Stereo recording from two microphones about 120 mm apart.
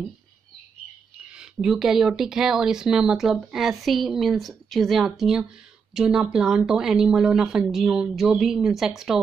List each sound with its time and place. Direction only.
1.3 s speech: 5° right (ahead or behind)